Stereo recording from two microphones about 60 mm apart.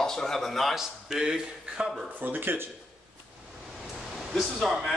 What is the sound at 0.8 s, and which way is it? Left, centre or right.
Speech, centre.